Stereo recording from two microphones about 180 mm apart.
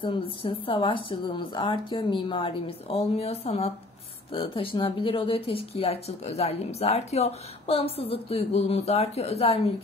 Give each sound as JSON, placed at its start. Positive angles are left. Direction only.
{"t": 0.0, "sound": "speech", "side_deg": 30}